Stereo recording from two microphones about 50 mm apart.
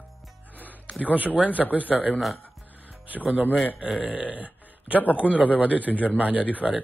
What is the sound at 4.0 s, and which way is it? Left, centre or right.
A man's voice, right.